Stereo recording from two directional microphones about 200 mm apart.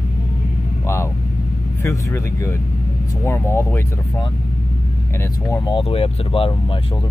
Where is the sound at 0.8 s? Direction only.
10° left (ahead or behind).